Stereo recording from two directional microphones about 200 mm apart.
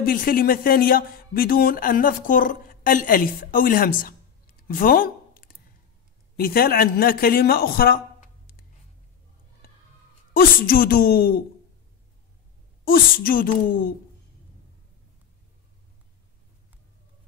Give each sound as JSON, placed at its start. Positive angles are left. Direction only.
{"t": 0.0, "sound": "a man's voice", "side_deg": 45}
{"t": 10.3, "sound": "a woman's voice", "side_deg": 45}
{"t": 12.8, "sound": "a woman's voice", "side_deg": 45}